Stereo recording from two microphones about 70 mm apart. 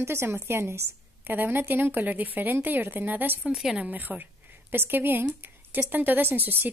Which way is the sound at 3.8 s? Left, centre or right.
Right.